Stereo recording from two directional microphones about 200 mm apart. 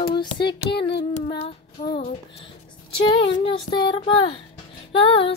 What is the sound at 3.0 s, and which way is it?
Child singing, 25° left (ahead or behind).